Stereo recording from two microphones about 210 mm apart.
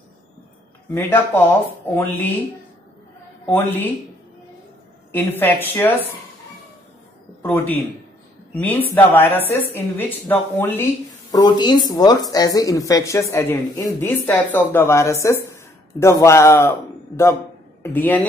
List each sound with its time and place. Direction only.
0.9 s speech: 10° left (ahead or behind)
3.4 s speech: 10° left (ahead or behind)
5.4 s speech: 10° left (ahead or behind)
7.4 s speech: 10° left (ahead or behind)
11.3 s speech: 20° left (ahead or behind)
17.8 s speech: 10° left (ahead or behind)